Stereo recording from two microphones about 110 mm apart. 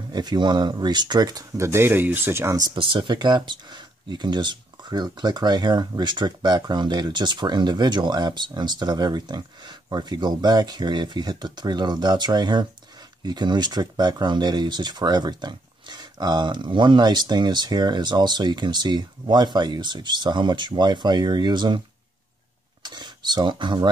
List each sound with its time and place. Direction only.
0.1 s speech: 40° right (ahead or behind)
2.8 s speech: 50° right (ahead or behind)
22.8 s speech: 40° right (ahead or behind)